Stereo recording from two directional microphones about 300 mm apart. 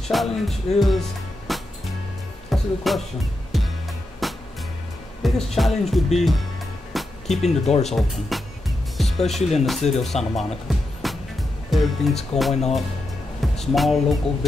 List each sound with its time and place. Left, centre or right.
0.1 s speech: centre
1.5 s music: centre
5.2 s speech: centre
6.9 s music: centre
7.4 s speech: left
7.9 s music: centre
9.4 s speech: left
10.0 s speech: centre
13.4 s music: centre